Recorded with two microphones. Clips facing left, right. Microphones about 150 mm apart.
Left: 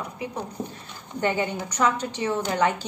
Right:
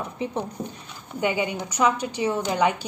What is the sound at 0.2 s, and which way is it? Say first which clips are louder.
Speech: right 5 dB; 25° right (ahead or behind).